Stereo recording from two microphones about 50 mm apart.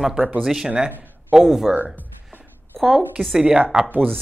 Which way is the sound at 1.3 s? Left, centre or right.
Centre.